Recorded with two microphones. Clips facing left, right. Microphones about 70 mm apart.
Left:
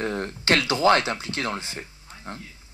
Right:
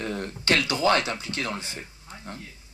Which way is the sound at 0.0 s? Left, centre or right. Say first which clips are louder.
Left 3 dB; left.